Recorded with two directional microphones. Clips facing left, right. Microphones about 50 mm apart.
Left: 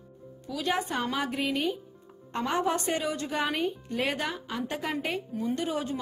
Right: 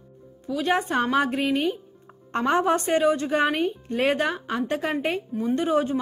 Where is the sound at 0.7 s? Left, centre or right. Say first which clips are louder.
Right 7 dB; right.